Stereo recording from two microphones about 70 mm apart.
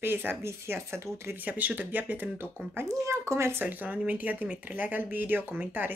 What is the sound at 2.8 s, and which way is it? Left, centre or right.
Speech, right.